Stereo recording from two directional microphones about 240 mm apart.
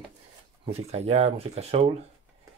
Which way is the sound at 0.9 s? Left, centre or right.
Right.